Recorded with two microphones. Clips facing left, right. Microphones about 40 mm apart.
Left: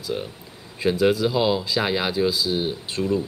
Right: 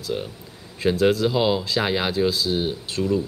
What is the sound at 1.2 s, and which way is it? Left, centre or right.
Speech, centre.